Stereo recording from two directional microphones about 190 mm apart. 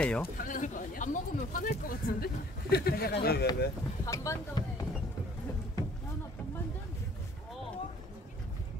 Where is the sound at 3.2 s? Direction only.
55° left (ahead or behind).